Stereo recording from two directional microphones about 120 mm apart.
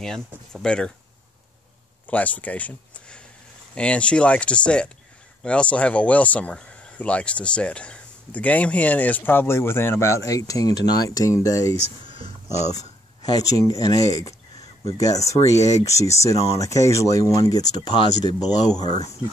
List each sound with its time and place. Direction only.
0.0 s speech: 5° left (ahead or behind)
2.0 s speech: 10° left (ahead or behind); by 11.7 s 30° left (ahead or behind)
13.2 s speech: 30° left (ahead or behind)